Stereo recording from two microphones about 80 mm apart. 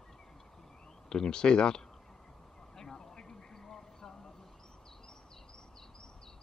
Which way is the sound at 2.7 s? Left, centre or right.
Centre.